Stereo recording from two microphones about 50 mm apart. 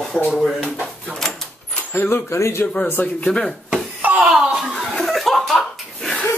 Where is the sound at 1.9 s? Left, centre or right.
Left.